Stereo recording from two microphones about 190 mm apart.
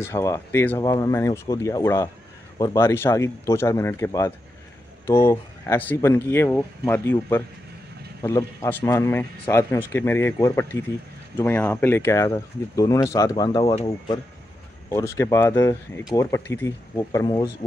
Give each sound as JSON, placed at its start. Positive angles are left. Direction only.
{"t": 0.0, "sound": "speech", "side_deg": 15}